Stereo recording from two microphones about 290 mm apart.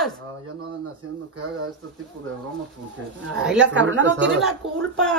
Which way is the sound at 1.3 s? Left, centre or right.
Right.